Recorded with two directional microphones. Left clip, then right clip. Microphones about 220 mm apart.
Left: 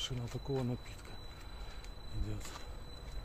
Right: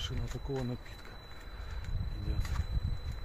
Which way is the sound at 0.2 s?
15° right (ahead or behind).